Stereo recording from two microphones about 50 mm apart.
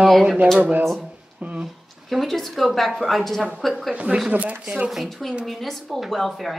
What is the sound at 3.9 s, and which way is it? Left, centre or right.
Speech, right.